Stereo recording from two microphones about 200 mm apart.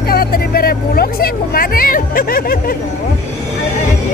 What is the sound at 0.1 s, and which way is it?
Vehicle, 50° left (ahead or behind).